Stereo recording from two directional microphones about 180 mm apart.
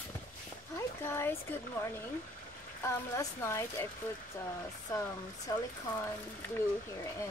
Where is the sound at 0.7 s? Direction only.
15° left (ahead or behind).